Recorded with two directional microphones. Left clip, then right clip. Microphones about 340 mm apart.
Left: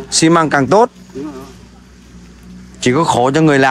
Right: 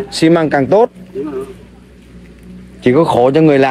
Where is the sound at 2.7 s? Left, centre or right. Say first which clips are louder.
Right 2 dB; centre.